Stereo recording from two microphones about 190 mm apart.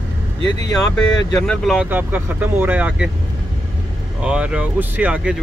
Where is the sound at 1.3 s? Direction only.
5° left (ahead or behind).